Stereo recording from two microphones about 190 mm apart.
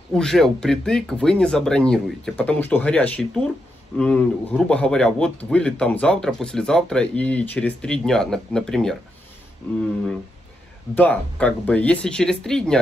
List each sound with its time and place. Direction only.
0.1 s speech: 5° left (ahead or behind)
11.0 s speech: 5° left (ahead or behind)